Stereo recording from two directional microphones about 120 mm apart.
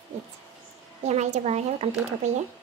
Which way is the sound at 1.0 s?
70° right (ahead or behind).